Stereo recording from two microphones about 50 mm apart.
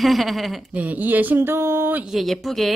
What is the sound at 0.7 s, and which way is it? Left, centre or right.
Speech, right.